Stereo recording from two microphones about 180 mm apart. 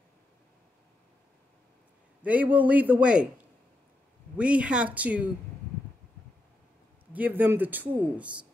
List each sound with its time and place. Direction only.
2.2 s a man's voice: 10° right (ahead or behind)
4.4 s a man's voice: 5° right (ahead or behind)
7.1 s a man's voice: 10° right (ahead or behind)